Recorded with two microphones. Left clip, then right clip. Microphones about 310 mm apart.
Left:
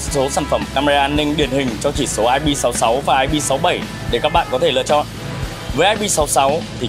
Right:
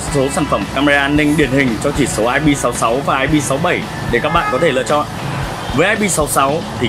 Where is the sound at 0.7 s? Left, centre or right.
Left.